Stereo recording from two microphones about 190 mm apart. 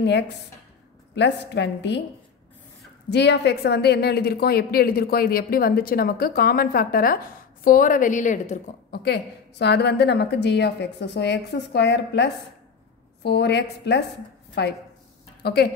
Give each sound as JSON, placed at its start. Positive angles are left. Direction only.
{"t": 1.1, "sound": "a woman's voice", "side_deg": 65}
{"t": 3.1, "sound": "a woman's voice", "side_deg": 65}
{"t": 9.0, "sound": "a woman's voice", "side_deg": 60}